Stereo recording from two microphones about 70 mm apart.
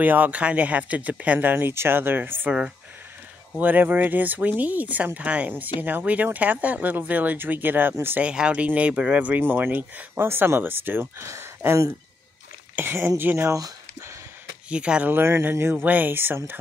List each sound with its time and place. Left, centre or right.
0.0 s speech: right
3.5 s speech: right
8.2 s speech: centre
9.4 s speech: right
12.7 s speech: right
13.5 s speech: right
14.7 s speech: centre
15.0 s speech: right
15.7 s speech: right